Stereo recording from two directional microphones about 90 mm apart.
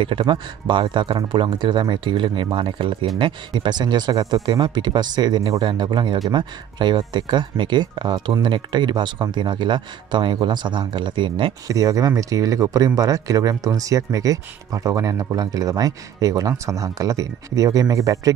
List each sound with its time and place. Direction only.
0.0 s speech: 70° right (ahead or behind)
11.6 s speech: 40° right (ahead or behind)